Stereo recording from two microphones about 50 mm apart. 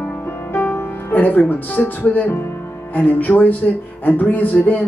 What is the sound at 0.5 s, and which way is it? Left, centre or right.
Music, left.